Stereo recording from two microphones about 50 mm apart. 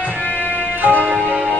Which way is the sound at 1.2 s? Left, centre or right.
Right.